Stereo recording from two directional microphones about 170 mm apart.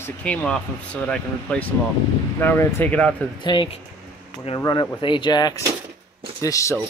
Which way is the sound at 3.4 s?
30° left (ahead or behind).